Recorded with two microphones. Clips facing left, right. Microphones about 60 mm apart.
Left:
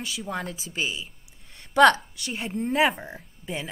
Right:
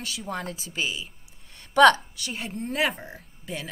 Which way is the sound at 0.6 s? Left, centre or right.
Centre.